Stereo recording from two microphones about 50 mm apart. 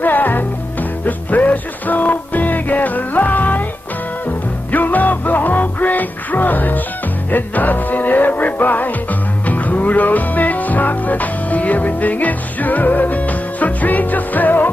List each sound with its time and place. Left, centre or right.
0.0 s music: left
4.7 s music: left